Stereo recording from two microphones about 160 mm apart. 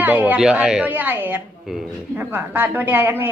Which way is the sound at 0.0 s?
10° right (ahead or behind).